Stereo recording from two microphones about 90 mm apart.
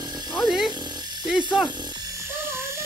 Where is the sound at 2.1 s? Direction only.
30° right (ahead or behind).